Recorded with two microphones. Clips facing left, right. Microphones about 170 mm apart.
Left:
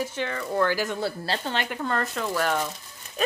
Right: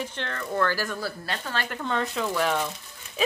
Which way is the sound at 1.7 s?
5° left (ahead or behind).